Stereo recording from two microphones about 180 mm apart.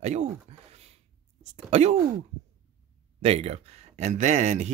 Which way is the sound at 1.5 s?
35° right (ahead or behind).